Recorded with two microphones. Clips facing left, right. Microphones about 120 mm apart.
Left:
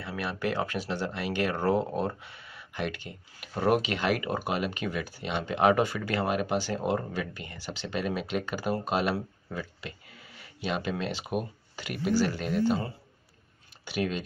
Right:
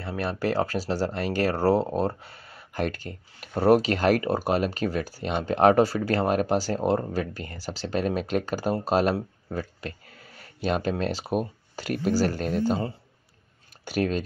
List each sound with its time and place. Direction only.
0.0 s speech: 35° right (ahead or behind)
13.8 s speech: 40° right (ahead or behind)